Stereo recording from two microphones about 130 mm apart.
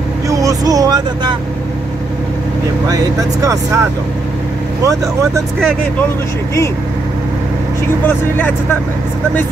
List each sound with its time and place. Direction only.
0.3 s speech: 25° right (ahead or behind)
2.9 s speech: 25° right (ahead or behind)
4.8 s speech: 25° right (ahead or behind)
8.1 s speech: 15° left (ahead or behind)